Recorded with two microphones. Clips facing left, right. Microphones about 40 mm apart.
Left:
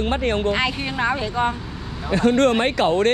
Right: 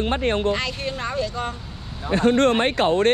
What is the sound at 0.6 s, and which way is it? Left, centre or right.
Speech, left.